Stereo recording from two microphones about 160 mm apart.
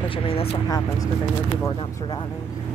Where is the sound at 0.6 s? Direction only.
20° left (ahead or behind).